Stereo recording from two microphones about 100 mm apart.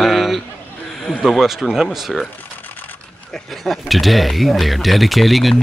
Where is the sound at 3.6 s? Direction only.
Centre (ahead or behind).